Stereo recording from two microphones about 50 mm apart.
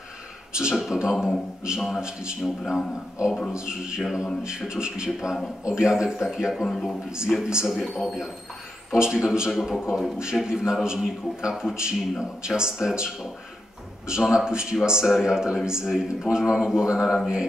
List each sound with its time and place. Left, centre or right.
0.6 s a man's voice: centre
6.7 s speech: centre
7.3 s a man's voice: centre
7.6 s speech: centre
8.9 s a man's voice: centre